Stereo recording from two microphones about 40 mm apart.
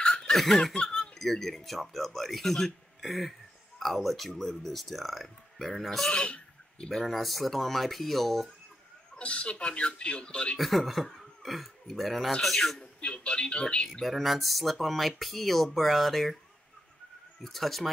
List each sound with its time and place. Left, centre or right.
0.0 s laughter: centre
0.7 s a sound: centre
1.2 s speech: centre
3.0 s a sound: centre
3.8 s speech: centre
6.1 s a sound: left
6.9 s speech: centre
9.1 s speech: left
10.6 s speech: centre
12.3 s speech: centre
13.0 s speech: left
14.0 s speech: centre
17.4 s speech: centre